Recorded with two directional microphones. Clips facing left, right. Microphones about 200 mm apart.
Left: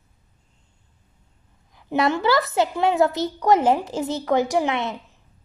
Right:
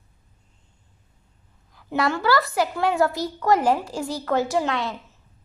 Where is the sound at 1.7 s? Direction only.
20° left (ahead or behind).